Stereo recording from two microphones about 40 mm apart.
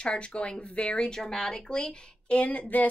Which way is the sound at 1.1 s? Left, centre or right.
Centre.